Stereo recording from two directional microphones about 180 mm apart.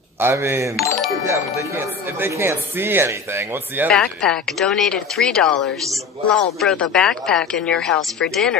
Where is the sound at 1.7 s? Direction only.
10° right (ahead or behind).